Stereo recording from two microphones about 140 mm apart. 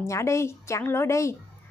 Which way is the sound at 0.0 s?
20° left (ahead or behind).